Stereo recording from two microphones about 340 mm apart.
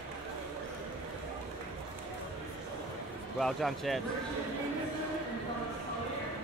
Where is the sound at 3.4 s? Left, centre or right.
Centre.